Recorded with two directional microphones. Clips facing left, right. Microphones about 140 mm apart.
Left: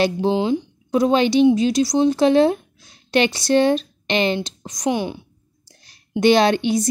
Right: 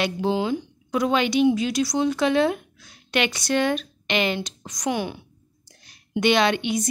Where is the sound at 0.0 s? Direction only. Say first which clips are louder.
Left 5 dB; 25° left (ahead or behind).